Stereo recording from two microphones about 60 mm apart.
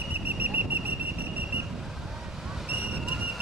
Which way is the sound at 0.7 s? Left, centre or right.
Right.